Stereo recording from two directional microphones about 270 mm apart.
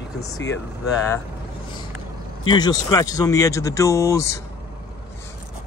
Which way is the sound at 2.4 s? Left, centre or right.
Centre.